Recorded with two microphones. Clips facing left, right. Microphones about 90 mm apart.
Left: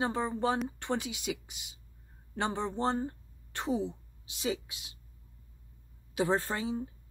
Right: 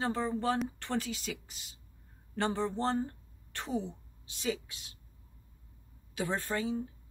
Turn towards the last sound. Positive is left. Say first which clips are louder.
# left 2 dB
turn(degrees=25)  # may be behind; listen again after turning